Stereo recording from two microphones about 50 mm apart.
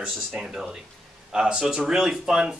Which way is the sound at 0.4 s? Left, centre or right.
Centre.